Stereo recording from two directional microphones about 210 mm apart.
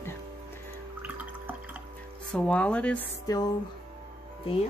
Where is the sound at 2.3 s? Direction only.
5° left (ahead or behind).